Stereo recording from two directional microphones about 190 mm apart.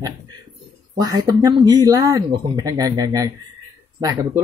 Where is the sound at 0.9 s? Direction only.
20° right (ahead or behind).